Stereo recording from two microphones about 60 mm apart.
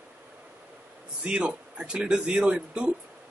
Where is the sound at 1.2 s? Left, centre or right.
Centre.